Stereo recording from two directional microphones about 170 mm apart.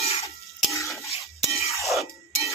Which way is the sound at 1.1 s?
35° left (ahead or behind).